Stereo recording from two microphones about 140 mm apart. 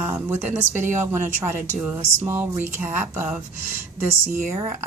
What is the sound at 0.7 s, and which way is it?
Speech, 60° right (ahead or behind).